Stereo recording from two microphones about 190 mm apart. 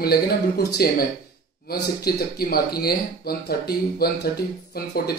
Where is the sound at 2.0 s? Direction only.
55° left (ahead or behind).